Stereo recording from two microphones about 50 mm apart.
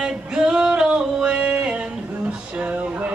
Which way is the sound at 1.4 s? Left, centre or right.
Right.